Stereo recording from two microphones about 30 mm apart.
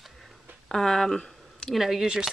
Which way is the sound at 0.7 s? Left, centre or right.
Centre.